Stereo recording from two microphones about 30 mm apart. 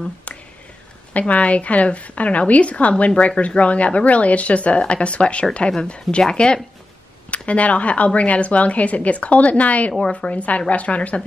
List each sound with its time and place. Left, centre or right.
1.1 s speech: left
7.2 s speech: left